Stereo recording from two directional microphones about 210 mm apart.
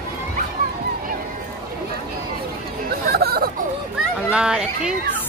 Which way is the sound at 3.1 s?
50° right (ahead or behind).